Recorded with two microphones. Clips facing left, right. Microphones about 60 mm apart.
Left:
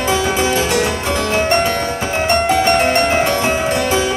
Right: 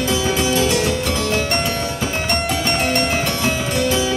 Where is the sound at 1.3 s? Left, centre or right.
Left.